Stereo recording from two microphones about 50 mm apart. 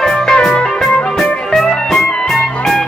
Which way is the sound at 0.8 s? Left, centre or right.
Centre.